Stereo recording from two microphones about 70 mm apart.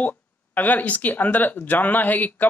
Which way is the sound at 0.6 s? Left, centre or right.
Left.